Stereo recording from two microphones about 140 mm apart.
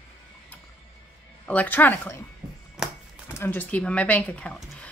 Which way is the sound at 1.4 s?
10° left (ahead or behind).